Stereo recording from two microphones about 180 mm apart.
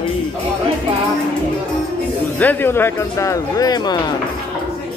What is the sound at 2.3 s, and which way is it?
Speech, 10° left (ahead or behind).